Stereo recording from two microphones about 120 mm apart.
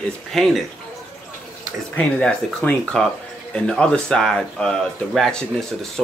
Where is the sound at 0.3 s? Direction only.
Centre (ahead or behind).